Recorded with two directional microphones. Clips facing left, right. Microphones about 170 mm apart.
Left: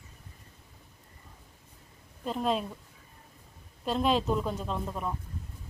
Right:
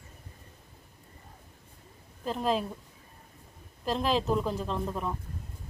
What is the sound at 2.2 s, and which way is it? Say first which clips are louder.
Speech: right 1 dB; centre (ahead or behind).